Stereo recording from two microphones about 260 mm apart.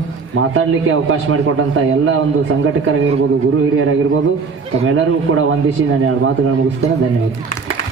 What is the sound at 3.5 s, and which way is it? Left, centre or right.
A man's voice, right.